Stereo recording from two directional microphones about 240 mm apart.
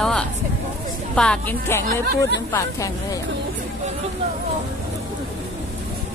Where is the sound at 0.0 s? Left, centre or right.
Centre.